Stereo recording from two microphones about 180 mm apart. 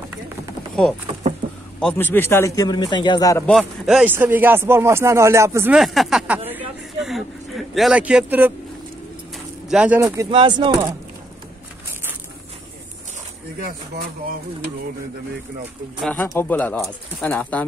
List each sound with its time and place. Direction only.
1.8 s a man's voice: 5° left (ahead or behind)
3.4 s speech: centre (ahead or behind)
5.8 s speech: centre (ahead or behind)
9.7 s speech: 5° right (ahead or behind)
9.9 s speech: 20° right (ahead or behind)
16.0 s a man's voice: 10° left (ahead or behind)